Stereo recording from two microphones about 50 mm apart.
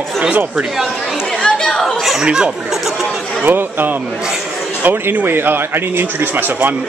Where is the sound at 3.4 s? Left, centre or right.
Right.